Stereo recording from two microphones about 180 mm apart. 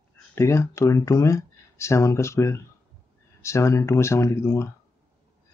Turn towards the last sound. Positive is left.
turn(degrees=15)  # may be behind; listen again after turning